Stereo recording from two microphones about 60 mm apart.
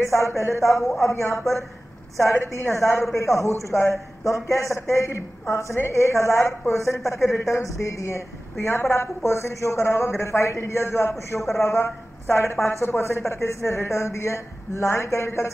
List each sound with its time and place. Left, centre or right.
0.1 s a woman's voice: left